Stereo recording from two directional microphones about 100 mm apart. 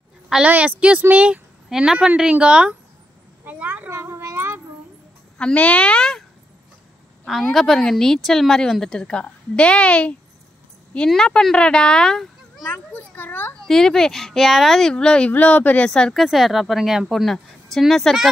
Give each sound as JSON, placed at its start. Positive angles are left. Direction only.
{"t": 0.3, "sound": "speech", "side_deg": -10}
{"t": 3.4, "sound": "a sound", "side_deg": -15}
{"t": 5.4, "sound": "a woman's voice", "side_deg": 10}
{"t": 7.5, "sound": "a woman's voice", "side_deg": 5}
{"t": 12.7, "sound": "a child's voice", "side_deg": 20}
{"t": 13.7, "sound": "speech", "side_deg": 5}